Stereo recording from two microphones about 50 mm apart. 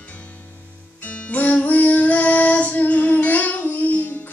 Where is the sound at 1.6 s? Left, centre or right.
Left.